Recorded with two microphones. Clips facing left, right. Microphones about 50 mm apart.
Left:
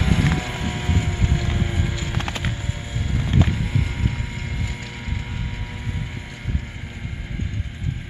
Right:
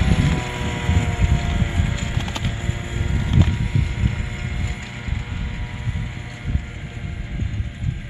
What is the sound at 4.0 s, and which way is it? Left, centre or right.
Boat, centre.